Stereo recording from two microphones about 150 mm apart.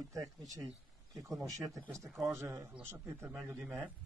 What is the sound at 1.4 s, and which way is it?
Speech, 20° right (ahead or behind).